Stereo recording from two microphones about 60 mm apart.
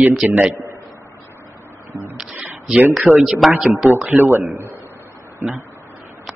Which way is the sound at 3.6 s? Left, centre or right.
Centre.